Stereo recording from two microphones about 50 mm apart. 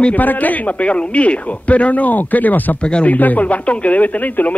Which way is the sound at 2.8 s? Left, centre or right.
Left.